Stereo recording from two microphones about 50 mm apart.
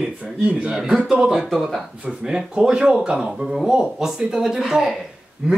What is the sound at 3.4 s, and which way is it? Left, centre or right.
Speech, centre.